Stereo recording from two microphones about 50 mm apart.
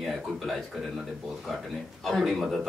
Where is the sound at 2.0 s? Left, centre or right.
Centre.